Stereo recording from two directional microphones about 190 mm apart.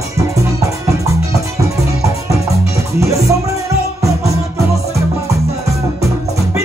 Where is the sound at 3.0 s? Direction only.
15° right (ahead or behind).